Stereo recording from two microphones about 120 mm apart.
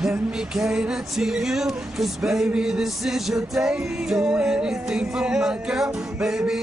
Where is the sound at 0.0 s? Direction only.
5° right (ahead or behind).